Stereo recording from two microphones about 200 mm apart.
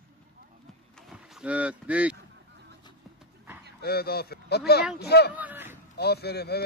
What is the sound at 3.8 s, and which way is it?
Speech, 50° left (ahead or behind).